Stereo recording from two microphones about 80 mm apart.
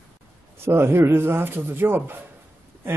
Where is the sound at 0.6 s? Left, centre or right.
Right.